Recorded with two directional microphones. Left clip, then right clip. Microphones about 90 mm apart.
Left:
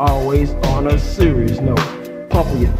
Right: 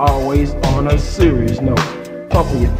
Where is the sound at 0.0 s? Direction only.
30° left (ahead or behind).